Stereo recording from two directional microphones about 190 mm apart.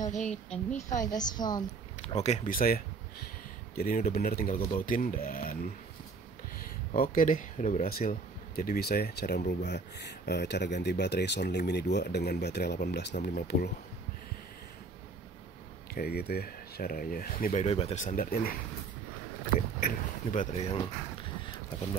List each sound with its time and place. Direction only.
0.1 s speech: 40° left (ahead or behind)
0.8 s a woman's voice: 20° left (ahead or behind)
2.0 s speech: 35° left (ahead or behind)
7.0 s speech: 45° left (ahead or behind)
15.9 s speech: 55° left (ahead or behind)
17.5 s speech: 30° left (ahead or behind); by 18.5 s 50° left (ahead or behind)
19.8 s speech: 40° left (ahead or behind)